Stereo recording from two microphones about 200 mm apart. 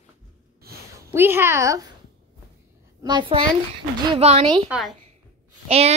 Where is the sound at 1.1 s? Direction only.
10° right (ahead or behind).